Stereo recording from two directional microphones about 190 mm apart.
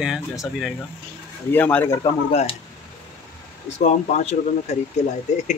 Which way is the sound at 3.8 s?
35° left (ahead or behind).